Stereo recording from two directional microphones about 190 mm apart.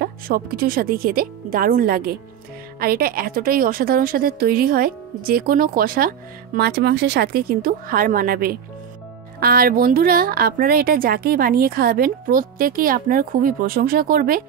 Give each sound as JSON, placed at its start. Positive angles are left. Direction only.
{"t": 0.0, "sound": "a woman's voice", "side_deg": -55}